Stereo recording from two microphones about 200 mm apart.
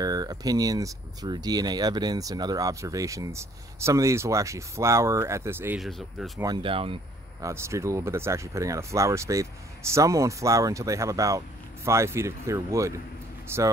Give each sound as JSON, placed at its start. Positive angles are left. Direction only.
{"t": 0.0, "sound": "speech", "side_deg": -20}
{"t": 5.8, "sound": "speech", "side_deg": 0}
{"t": 6.4, "sound": "speech", "side_deg": -25}
{"t": 7.4, "sound": "speech", "side_deg": -15}